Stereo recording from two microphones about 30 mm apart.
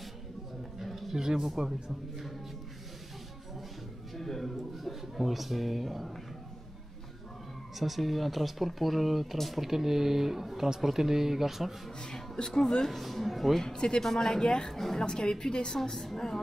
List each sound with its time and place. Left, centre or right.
0.7 s a sound: centre
1.1 s speech: centre
4.1 s speech: centre
7.8 s speech: centre
12.0 s a woman's voice: left
12.9 s speech: centre
13.7 s a woman's voice: left
14.4 s a woman's voice: left
14.7 s speech: centre
15.0 s a woman's voice: left